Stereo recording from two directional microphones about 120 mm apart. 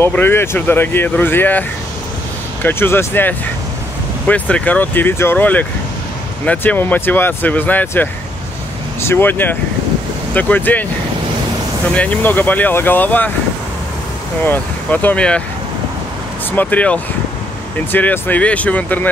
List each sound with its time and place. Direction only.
0.0 s speech: 15° left (ahead or behind)
11.9 s speech: 10° left (ahead or behind)
14.4 s speech: 15° left (ahead or behind)
16.5 s speech: 10° left (ahead or behind)